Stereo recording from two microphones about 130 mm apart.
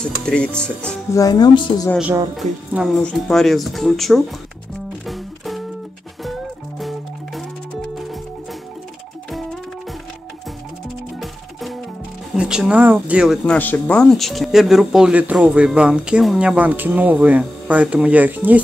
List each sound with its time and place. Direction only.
0.0 s speech: 5° left (ahead or behind)
1.1 s speech: 30° left (ahead or behind)
2.9 s speech: 5° left (ahead or behind)
5.0 s music: centre (ahead or behind)
12.4 s speech: 5° right (ahead or behind)
13.5 s speech: 10° left (ahead or behind); by 18.6 s 15° right (ahead or behind)